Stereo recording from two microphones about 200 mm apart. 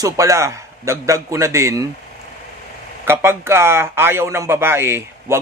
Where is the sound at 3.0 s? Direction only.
10° right (ahead or behind).